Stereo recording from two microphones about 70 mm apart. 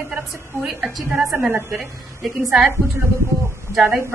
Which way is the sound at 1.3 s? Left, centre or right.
Right.